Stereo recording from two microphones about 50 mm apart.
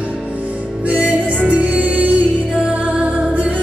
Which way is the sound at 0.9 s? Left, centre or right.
Right.